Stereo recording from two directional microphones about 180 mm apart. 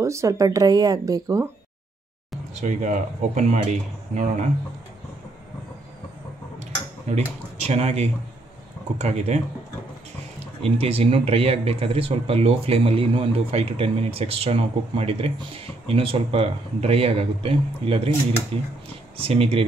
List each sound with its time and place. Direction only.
0.0 s speech: 15° right (ahead or behind)
2.6 s speech: 45° right (ahead or behind)
7.1 s speech: 35° right (ahead or behind)
10.6 s speech: 35° right (ahead or behind)